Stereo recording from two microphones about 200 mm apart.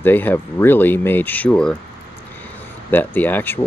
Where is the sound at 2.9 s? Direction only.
10° left (ahead or behind).